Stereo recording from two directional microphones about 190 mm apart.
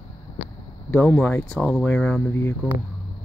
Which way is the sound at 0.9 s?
5° left (ahead or behind).